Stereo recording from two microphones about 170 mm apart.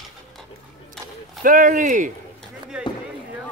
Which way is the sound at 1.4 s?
55° right (ahead or behind).